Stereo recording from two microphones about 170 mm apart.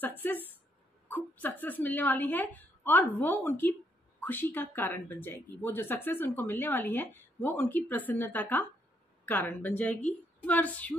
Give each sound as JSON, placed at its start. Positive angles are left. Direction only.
{"t": 0.0, "sound": "a woman's voice", "side_deg": 10}